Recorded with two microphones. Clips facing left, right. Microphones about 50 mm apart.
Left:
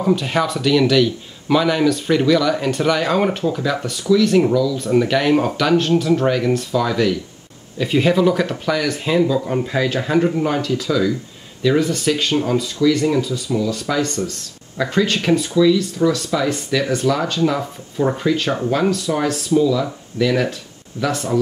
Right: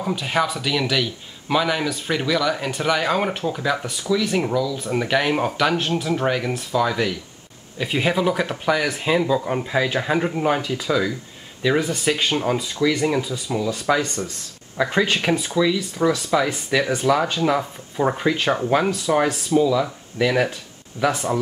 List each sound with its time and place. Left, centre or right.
0.0 s a man's voice: centre